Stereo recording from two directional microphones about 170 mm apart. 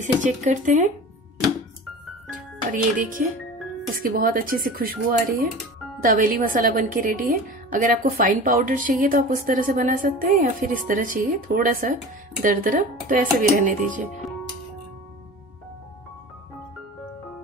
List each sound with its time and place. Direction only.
0.0 s a woman's voice: 45° right (ahead or behind)
2.7 s a woman's voice: 50° right (ahead or behind)